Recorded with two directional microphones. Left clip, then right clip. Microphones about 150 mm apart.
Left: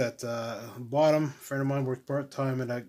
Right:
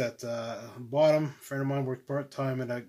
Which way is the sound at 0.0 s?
35° left (ahead or behind).